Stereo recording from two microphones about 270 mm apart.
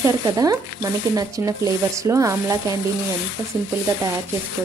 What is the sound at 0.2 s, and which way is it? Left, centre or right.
A woman's voice, centre.